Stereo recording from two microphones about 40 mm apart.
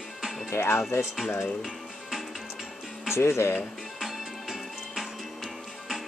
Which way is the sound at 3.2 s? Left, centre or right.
Left.